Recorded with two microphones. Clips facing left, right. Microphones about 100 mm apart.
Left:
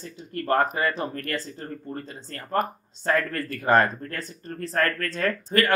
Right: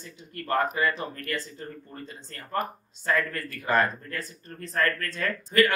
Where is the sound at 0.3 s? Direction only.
40° left (ahead or behind).